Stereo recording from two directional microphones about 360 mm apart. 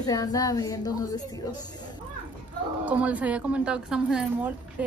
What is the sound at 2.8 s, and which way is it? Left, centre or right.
Speech, centre.